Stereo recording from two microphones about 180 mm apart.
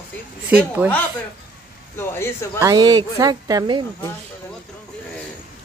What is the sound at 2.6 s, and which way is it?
Speech, 20° right (ahead or behind).